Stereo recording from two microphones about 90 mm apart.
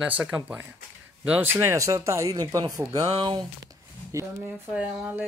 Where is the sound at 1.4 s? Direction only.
30° right (ahead or behind); by 3.4 s 55° right (ahead or behind).